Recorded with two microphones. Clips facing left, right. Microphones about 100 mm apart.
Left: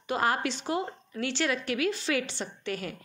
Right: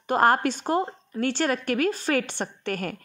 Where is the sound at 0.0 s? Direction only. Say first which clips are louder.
Right 7 dB; 50° right (ahead or behind).